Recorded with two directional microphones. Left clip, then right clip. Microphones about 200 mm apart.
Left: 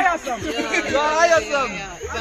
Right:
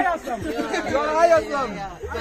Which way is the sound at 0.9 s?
65° right (ahead or behind).